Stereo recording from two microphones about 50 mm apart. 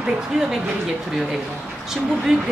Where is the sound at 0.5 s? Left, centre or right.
Centre.